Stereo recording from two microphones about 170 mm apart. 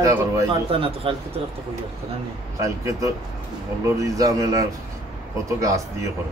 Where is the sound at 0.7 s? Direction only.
35° right (ahead or behind).